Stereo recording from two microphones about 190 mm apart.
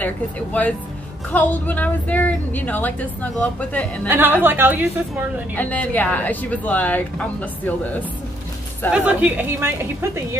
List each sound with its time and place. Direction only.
0.0 s a woman's voice: 10° left (ahead or behind)
4.1 s a woman's voice: 10° right (ahead or behind)
5.6 s a woman's voice: 10° left (ahead or behind)
8.9 s a woman's voice: 10° right (ahead or behind)